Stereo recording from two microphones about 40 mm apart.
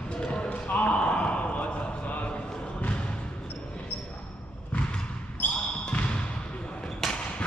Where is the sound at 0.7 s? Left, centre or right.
Left.